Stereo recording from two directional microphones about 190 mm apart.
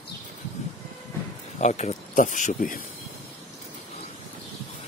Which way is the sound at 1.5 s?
40° left (ahead or behind).